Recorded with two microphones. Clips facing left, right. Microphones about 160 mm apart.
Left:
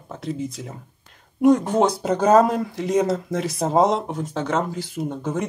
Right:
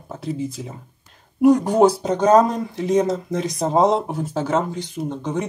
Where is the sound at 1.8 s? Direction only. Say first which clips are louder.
Right 4 dB; 30° right (ahead or behind).